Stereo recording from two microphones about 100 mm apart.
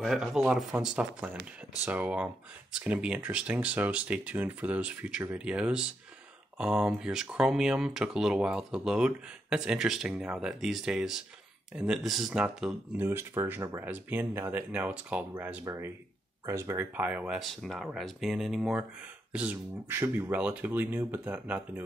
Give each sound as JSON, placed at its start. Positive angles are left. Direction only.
{"t": 0.0, "sound": "speech", "side_deg": 0}
{"t": 12.9, "sound": "speech", "side_deg": -20}
{"t": 15.6, "sound": "speech", "side_deg": -30}
{"t": 16.9, "sound": "speech", "side_deg": -15}
{"t": 17.4, "sound": "speech", "side_deg": 0}
{"t": 20.3, "sound": "speech", "side_deg": -15}